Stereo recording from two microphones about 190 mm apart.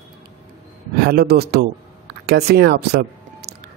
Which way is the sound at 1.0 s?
55° right (ahead or behind).